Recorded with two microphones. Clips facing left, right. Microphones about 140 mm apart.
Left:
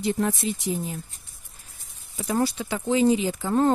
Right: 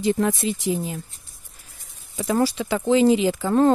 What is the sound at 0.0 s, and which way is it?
Speech, 90° right.